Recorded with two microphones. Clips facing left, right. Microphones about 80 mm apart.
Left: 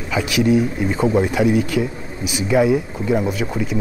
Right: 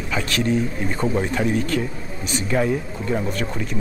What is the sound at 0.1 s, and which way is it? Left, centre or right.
A man's voice, centre.